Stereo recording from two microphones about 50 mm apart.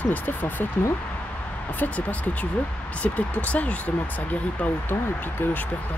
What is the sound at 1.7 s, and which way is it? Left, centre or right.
Speech, left.